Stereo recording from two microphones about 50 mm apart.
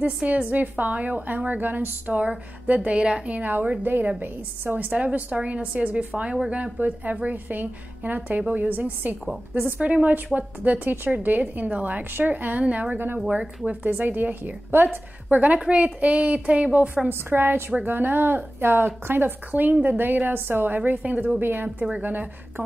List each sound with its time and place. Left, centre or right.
0.0 s a woman's voice: right
12.6 s a woman's voice: right
12.9 s a woman's voice: right
15.2 s a woman's voice: right
17.1 s a woman's voice: right
21.4 s a woman's voice: right